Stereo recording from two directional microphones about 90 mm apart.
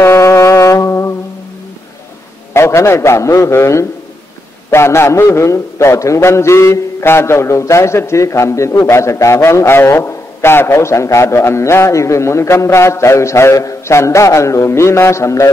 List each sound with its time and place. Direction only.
0.0 s music: 30° left (ahead or behind)
2.5 s a man's voice: 30° left (ahead or behind)